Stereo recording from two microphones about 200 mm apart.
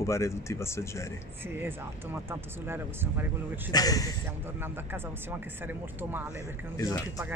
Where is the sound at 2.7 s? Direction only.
10° right (ahead or behind).